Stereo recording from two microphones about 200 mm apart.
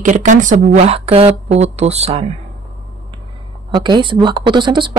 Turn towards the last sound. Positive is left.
turn(degrees=-25)  # may be behind; listen again after turning